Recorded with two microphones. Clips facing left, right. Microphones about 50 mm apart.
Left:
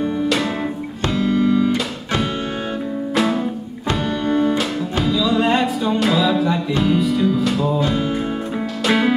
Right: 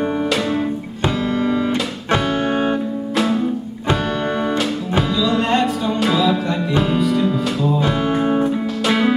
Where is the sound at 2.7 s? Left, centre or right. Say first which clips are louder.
Even; centre.